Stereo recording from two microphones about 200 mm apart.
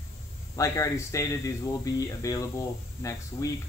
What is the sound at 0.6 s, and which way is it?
Speech, 15° left (ahead or behind).